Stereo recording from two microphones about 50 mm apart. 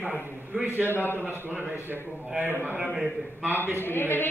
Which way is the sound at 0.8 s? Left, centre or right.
Left.